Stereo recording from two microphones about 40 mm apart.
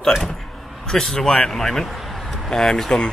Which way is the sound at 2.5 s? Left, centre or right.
Centre.